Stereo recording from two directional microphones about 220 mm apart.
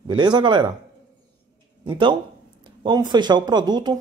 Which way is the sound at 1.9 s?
20° right (ahead or behind).